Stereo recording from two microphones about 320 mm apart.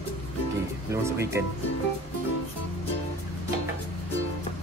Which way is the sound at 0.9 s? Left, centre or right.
Centre.